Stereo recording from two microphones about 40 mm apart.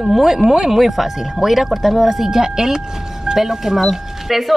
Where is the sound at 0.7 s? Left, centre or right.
Centre.